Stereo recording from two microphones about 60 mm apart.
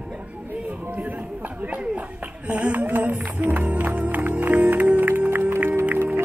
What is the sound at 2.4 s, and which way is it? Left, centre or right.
Music, right.